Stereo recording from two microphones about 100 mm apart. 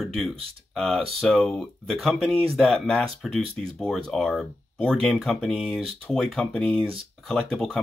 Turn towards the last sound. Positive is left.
turn(degrees=5)  # may be behind; listen again after turning